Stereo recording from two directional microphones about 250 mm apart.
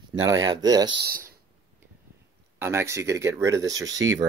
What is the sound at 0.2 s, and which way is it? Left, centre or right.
Speech, centre.